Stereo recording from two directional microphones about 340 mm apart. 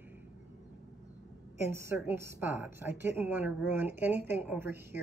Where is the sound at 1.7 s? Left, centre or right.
Centre.